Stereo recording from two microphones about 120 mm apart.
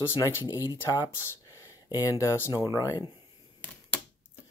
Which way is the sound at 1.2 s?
20° left (ahead or behind).